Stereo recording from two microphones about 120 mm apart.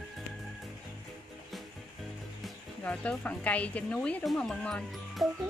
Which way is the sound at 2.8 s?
10° left (ahead or behind).